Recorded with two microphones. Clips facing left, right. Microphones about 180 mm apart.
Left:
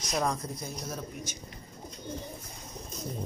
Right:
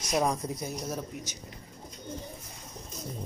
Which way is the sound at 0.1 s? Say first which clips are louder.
Right 3 dB; 15° right (ahead or behind).